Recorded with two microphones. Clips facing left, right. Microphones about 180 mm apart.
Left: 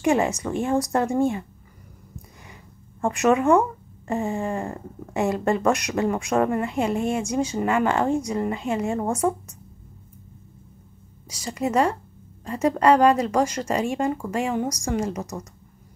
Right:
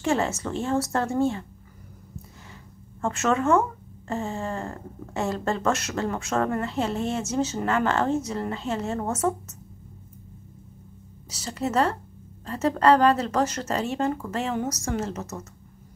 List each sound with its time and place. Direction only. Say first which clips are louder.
0.0 s speech: left 4 dB; 15° left (ahead or behind)
3.0 s speech: left 4 dB; 15° left (ahead or behind)
11.2 s speech: left 3 dB; 10° left (ahead or behind)